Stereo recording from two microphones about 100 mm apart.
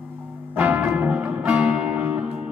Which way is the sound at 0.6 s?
15° right (ahead or behind).